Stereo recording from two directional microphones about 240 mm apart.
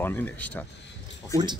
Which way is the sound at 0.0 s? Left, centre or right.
Centre.